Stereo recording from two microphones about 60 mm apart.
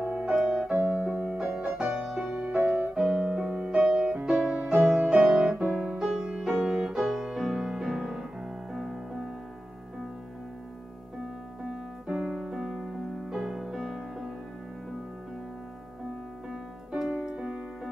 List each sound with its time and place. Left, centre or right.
0.0 s piano: right
0.4 s piano: centre
0.7 s music: right
1.4 s music: centre
2.5 s music: right
3.0 s music: centre
4.9 s music: centre
5.5 s music: right
5.9 s music: centre
11.6 s music: centre
17.1 s music: centre